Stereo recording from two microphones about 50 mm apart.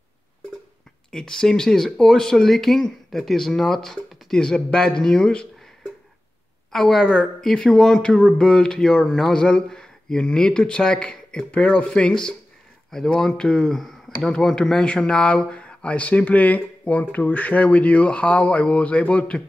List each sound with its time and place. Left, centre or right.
1.1 s speech: centre
6.7 s speech: centre; by 19.4 s left